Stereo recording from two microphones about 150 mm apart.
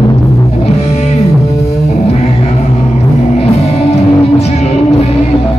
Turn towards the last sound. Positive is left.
turn(degrees=45)  # may be behind; listen again after turning